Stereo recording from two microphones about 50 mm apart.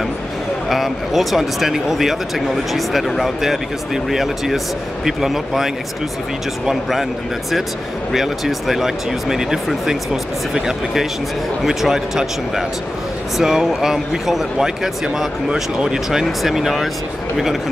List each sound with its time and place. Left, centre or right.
0.7 s speech: centre
8.1 s speech: centre
11.6 s speech: centre